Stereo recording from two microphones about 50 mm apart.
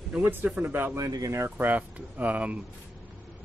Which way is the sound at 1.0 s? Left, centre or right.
Right.